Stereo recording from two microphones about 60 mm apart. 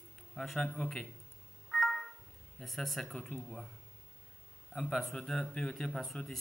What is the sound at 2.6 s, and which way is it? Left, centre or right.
Speech, centre.